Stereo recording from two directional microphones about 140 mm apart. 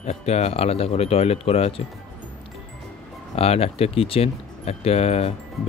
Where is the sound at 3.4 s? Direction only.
45° left (ahead or behind).